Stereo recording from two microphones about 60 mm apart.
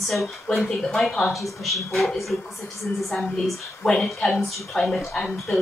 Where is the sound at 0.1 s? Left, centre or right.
Centre.